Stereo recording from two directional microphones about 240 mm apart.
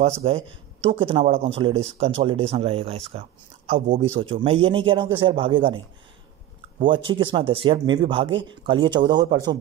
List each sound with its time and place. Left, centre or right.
0.2 s speech: right
6.9 s speech: right